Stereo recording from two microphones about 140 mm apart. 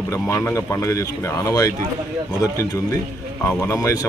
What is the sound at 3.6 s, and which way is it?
Speech, 20° left (ahead or behind).